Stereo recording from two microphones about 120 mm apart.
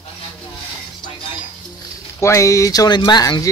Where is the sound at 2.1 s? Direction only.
25° left (ahead or behind).